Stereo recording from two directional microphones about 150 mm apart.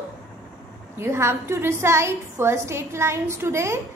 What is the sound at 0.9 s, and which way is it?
A woman's voice, 15° right (ahead or behind).